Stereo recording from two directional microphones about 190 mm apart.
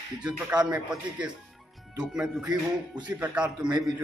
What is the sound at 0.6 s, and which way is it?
Speech, 5° right (ahead or behind).